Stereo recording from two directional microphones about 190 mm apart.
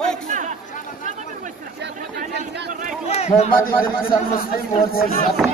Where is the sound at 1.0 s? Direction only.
40° right (ahead or behind).